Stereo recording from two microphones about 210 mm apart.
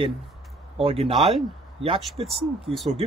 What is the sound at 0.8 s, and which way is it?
Speech, 25° right (ahead or behind).